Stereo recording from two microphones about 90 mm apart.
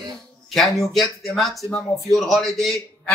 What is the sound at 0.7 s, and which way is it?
Speech, centre (ahead or behind).